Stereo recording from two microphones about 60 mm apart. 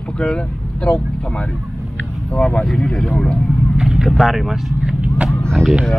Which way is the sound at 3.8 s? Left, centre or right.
Centre.